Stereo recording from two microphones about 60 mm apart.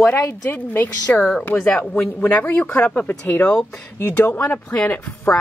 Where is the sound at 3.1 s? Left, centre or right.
Left.